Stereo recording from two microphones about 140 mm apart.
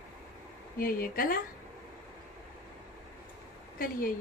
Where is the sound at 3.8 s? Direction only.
90° left.